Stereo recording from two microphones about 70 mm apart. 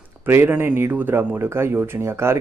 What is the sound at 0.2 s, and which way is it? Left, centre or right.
A man's voice, right.